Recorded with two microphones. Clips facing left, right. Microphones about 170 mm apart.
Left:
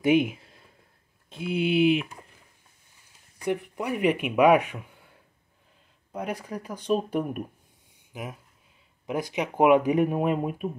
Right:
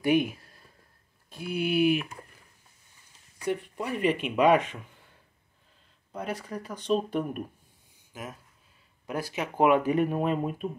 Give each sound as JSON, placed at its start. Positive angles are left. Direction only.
{"t": 0.0, "sound": "speech", "side_deg": 20}
{"t": 3.3, "sound": "speech", "side_deg": 15}
{"t": 6.1, "sound": "speech", "side_deg": 10}